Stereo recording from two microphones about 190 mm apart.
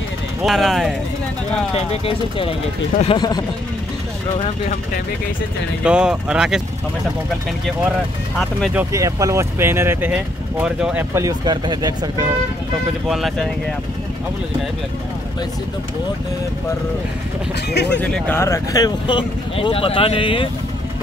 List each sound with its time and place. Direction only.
0.4 s speech: centre (ahead or behind)
1.9 s speech: 30° left (ahead or behind)
5.9 s speech: 5° right (ahead or behind)
8.4 s speech: centre (ahead or behind)
8.9 s speech: 15° right (ahead or behind)
13.1 s speech: centre (ahead or behind)
17.6 s speech: 60° left (ahead or behind)
18.0 s speech: 5° left (ahead or behind); by 20.4 s 25° left (ahead or behind)